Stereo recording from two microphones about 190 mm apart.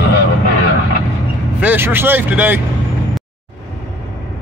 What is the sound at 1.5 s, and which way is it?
Speech, 10° right (ahead or behind).